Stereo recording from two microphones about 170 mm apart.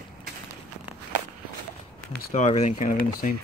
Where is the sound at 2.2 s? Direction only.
45° left (ahead or behind).